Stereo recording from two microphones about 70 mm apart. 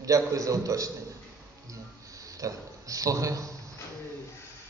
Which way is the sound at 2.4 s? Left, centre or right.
Right.